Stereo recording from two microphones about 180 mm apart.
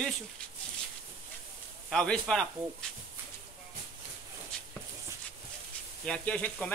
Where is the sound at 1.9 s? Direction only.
5° left (ahead or behind).